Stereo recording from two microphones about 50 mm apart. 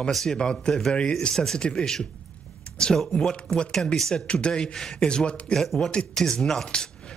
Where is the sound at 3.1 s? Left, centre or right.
Centre.